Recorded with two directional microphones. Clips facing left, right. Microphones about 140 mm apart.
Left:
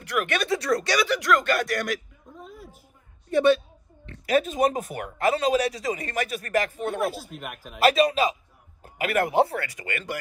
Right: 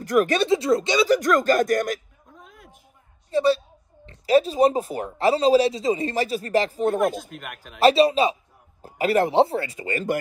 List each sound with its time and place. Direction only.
0.0 s a man's voice: 40° right (ahead or behind)
0.5 s a woman's voice: 25° right (ahead or behind)
1.0 s speech: 45° right (ahead or behind)
3.3 s a woman's voice: 30° right (ahead or behind)
7.0 s speech: 5° left (ahead or behind)
7.8 s a man's voice: 30° right (ahead or behind)